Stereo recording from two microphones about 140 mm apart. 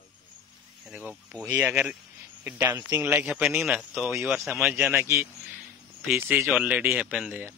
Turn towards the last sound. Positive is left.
turn(degrees=-10)  # may be behind; listen again after turning